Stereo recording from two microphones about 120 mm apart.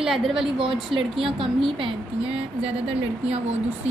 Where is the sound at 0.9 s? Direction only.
50° right (ahead or behind).